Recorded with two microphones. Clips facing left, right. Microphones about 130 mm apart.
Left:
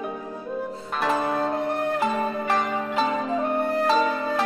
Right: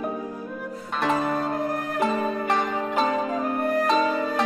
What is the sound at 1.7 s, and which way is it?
Music, 25° left (ahead or behind).